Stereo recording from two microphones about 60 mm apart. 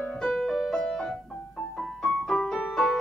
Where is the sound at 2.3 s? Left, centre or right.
Centre.